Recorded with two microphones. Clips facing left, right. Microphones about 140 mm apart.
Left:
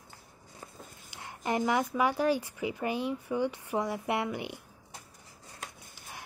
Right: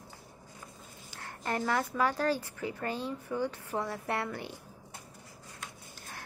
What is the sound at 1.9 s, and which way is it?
Speech, 15° left (ahead or behind).